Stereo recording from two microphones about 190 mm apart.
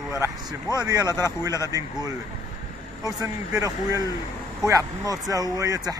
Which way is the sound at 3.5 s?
15° right (ahead or behind).